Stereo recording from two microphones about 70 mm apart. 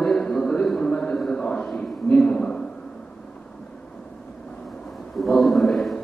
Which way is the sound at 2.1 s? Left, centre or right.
Centre.